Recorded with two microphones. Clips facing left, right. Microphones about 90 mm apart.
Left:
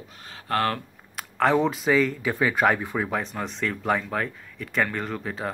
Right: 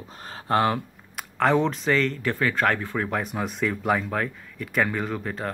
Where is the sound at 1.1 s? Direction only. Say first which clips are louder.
Even; centre (ahead or behind).